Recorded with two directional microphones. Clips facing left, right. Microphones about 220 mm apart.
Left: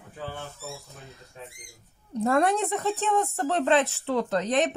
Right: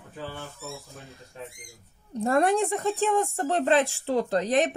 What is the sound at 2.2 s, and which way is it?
A woman's voice, 30° right (ahead or behind).